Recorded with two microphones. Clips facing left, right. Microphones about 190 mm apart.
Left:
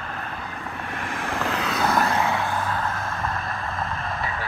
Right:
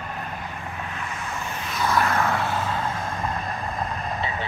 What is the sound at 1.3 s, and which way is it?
Vehicle, 90° left.